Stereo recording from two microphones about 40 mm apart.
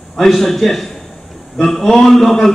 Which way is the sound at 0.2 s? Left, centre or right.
Centre.